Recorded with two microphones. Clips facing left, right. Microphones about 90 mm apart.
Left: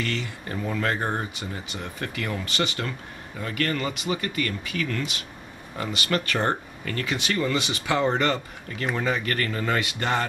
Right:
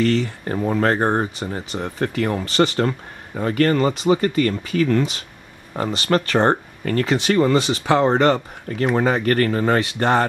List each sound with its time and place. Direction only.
0.0 s speech: 35° right (ahead or behind)